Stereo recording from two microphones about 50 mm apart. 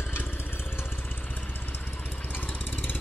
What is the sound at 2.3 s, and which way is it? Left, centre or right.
Vehicle, left.